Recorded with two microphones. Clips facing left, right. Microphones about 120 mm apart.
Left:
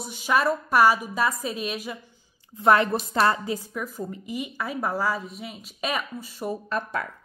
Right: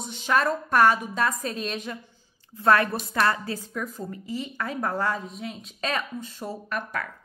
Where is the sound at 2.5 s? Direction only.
20° left (ahead or behind).